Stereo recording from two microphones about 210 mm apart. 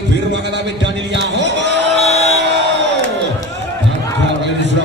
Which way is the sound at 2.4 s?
55° right (ahead or behind).